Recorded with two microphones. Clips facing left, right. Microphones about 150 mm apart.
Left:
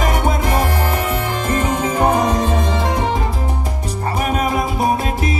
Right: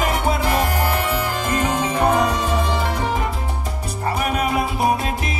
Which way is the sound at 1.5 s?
35° left (ahead or behind).